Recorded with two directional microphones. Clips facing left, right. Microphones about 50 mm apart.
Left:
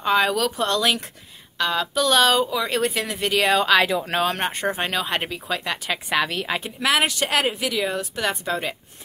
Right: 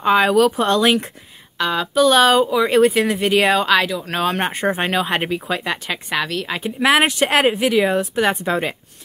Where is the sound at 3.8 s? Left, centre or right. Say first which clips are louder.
Left 1 dB; centre.